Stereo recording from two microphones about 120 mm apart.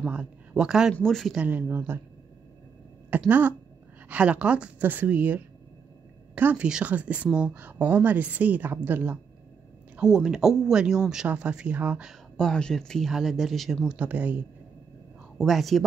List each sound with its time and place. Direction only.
0.0 s speech: 10° right (ahead or behind)
1.4 s a woman's voice: 15° right (ahead or behind)
3.3 s a woman's voice: 15° right (ahead or behind)
9.9 s speech: 5° right (ahead or behind)
12.1 s speech: 5° left (ahead or behind); by 14.4 s 15° right (ahead or behind)
15.3 s speech: centre (ahead or behind)